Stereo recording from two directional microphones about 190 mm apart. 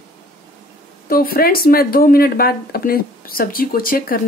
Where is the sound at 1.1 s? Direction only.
50° left (ahead or behind).